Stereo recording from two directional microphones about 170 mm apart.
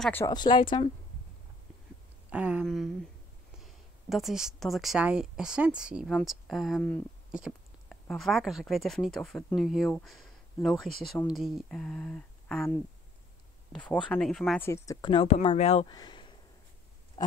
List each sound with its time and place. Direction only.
0.0 s speech: 10° left (ahead or behind)
0.3 s speech: 25° left (ahead or behind)
2.3 s a sound: 10° right (ahead or behind)
2.6 s a woman's voice: centre (ahead or behind)
13.7 s speech: 5° left (ahead or behind)
14.6 s speech: 20° left (ahead or behind); by 15.9 s 35° left (ahead or behind)
15.9 s a sound: 25° left (ahead or behind)